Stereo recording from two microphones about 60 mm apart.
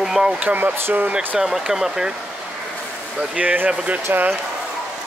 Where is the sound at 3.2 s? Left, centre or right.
Right.